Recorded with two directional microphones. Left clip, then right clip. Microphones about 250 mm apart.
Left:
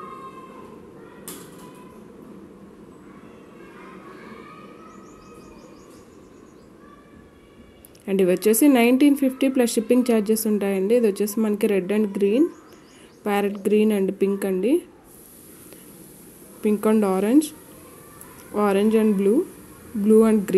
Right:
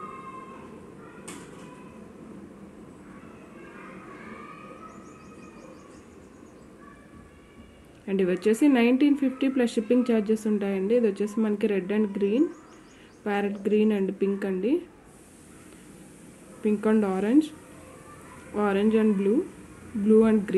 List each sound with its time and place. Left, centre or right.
8.0 s speech: left
16.6 s speech: left